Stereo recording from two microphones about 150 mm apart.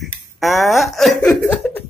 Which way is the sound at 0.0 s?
Centre (ahead or behind).